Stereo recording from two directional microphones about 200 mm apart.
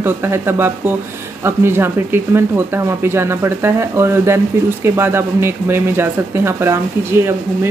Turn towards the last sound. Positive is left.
turn(degrees=-10)  # may be behind; listen again after turning